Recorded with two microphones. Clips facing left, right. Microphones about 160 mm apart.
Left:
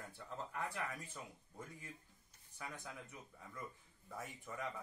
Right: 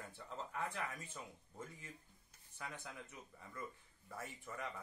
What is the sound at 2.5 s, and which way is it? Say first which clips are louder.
Speech: even; 10° left (ahead or behind).